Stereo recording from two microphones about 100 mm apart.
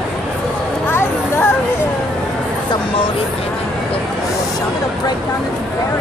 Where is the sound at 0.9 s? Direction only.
25° left (ahead or behind).